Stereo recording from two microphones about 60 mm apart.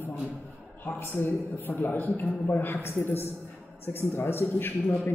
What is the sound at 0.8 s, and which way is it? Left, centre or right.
A man's voice, left.